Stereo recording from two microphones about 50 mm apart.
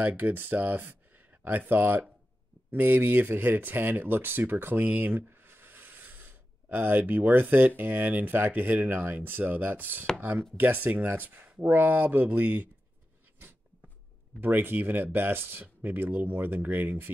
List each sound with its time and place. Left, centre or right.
0.2 s speech: right
14.4 s speech: right